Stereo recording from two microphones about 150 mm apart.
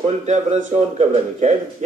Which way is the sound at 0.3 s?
50° right (ahead or behind).